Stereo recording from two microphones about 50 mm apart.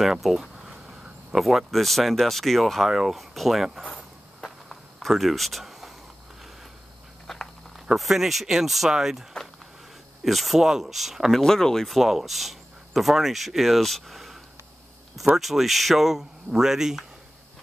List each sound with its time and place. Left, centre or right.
0.0 s speech: centre
4.4 s a sound: centre
7.3 s a sound: centre
7.9 s speech: centre
9.3 s speech: centre
10.2 s speech: centre
11.4 s speech: centre
12.0 s speech: centre